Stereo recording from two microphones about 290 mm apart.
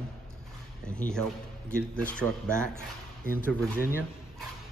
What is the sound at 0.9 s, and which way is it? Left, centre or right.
Speech, centre.